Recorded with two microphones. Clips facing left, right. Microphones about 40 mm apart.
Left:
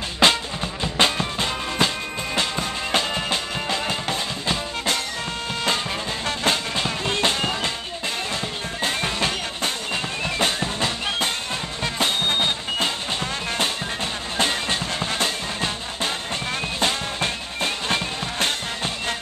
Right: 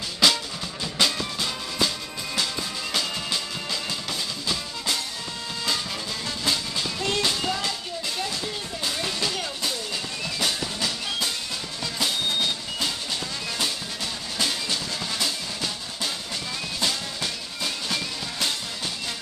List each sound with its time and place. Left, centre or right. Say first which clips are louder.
0.2 s music: left 4 dB; left
2.9 s music: left 5 dB; left
6.4 s music: left 4 dB; left
8.8 s music: left 5 dB; left
14.4 s music: left 5 dB; left